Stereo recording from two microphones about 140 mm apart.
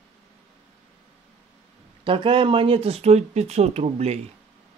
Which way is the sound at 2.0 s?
40° right (ahead or behind).